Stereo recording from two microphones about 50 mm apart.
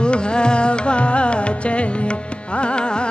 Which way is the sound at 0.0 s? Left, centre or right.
Centre.